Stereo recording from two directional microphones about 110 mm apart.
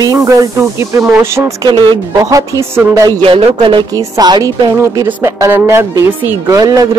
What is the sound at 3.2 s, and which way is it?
Speech, 55° right (ahead or behind).